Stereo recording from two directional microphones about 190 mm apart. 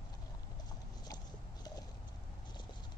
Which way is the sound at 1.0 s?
20° left (ahead or behind).